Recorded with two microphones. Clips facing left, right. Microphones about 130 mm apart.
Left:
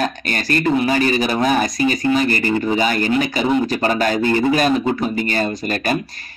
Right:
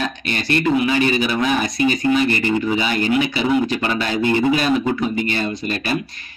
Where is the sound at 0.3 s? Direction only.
40° left (ahead or behind).